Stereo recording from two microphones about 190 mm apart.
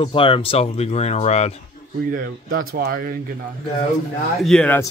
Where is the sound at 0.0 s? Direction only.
25° left (ahead or behind).